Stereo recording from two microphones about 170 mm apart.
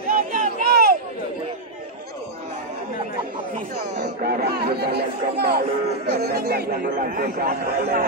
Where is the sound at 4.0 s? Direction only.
70° right (ahead or behind).